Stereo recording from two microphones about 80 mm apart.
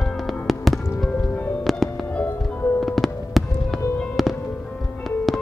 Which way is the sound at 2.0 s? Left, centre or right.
Left.